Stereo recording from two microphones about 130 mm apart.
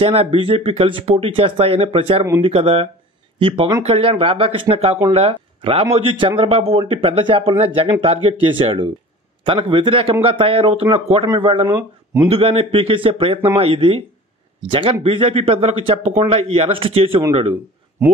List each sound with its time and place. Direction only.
0.0 s a man's voice: 45° right (ahead or behind)